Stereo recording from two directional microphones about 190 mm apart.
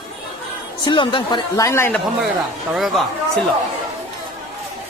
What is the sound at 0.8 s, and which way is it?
Speech, 25° left (ahead or behind).